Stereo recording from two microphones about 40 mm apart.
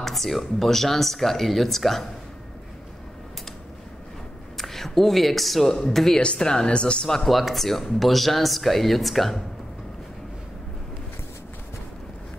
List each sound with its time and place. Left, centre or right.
0.0 s speech: centre
4.6 s speech: centre
6.1 s speech: left
7.1 s speech: centre